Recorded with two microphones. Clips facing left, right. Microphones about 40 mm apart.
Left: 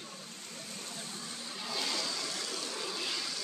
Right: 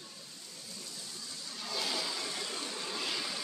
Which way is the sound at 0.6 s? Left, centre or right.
Left.